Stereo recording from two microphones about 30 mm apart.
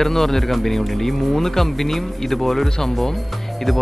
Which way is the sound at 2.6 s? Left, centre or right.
Centre.